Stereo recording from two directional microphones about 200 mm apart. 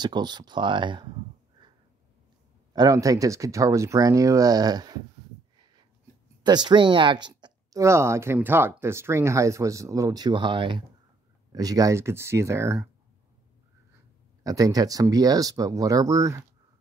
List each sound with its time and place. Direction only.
0.0 s speech: 20° right (ahead or behind)
2.7 s speech: 20° right (ahead or behind)
6.4 s speech: 20° right (ahead or behind)
14.4 s speech: 20° right (ahead or behind)